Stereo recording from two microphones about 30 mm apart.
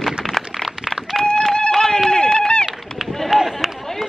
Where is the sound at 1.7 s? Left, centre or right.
Centre.